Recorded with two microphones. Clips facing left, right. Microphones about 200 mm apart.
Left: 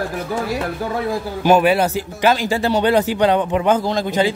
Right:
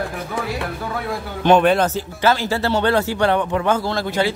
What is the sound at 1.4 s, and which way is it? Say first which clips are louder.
Speech: even; 5° left (ahead or behind).